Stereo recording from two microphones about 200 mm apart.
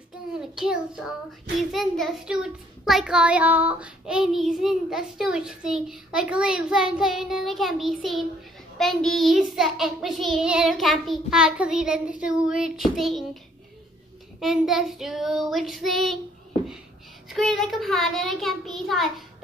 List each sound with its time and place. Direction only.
0.6 s a child's voice: centre (ahead or behind)
14.4 s a child's voice: centre (ahead or behind)
17.3 s a child's voice: centre (ahead or behind)